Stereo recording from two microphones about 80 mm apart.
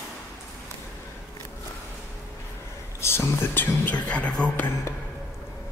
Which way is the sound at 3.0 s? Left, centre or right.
Left.